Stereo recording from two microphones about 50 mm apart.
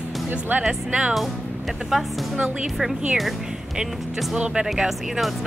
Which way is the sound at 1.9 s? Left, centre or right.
Centre.